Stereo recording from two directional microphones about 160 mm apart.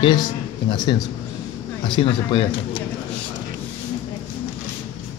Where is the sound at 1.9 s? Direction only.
35° left (ahead or behind).